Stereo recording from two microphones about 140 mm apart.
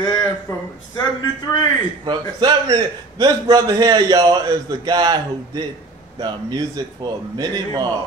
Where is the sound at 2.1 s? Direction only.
30° right (ahead or behind).